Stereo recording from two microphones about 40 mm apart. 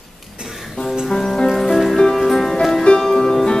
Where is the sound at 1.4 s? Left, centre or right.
Centre.